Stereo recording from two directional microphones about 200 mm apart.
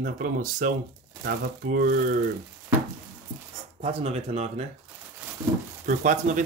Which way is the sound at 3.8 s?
30° right (ahead or behind).